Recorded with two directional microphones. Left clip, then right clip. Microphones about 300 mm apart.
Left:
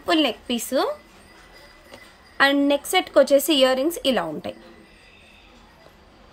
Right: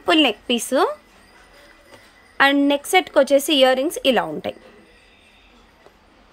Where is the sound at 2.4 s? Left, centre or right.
Centre.